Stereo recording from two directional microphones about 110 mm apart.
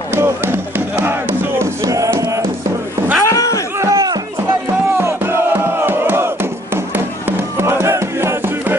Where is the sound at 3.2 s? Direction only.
30° left (ahead or behind).